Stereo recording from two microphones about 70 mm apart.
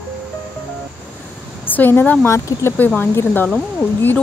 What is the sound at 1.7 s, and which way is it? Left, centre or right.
Speech, left.